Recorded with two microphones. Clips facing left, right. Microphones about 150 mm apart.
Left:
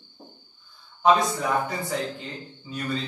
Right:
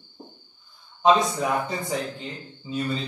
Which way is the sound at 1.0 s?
20° right (ahead or behind).